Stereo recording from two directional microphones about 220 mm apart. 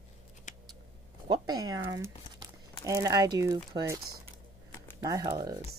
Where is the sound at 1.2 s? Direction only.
20° right (ahead or behind).